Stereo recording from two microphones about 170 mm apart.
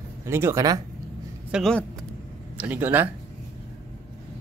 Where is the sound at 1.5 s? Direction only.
5° left (ahead or behind).